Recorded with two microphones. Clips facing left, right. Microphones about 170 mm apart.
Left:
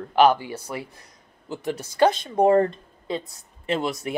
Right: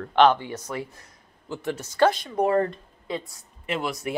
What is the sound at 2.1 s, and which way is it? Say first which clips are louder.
Speech: left 4 dB; 25° left (ahead or behind).